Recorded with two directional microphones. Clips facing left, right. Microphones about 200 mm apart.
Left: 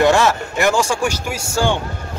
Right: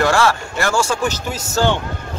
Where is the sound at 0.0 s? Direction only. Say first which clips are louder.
Left 2 dB; 20° left (ahead or behind).